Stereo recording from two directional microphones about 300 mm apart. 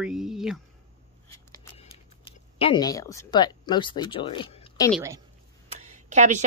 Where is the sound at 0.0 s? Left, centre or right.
Centre.